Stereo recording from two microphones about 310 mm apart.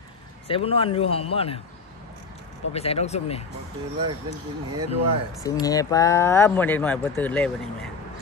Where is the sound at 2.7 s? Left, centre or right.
Centre.